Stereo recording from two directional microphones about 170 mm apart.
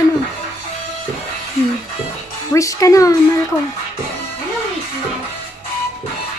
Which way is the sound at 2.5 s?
20° left (ahead or behind).